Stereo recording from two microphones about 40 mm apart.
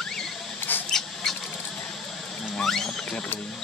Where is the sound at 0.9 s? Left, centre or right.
Centre.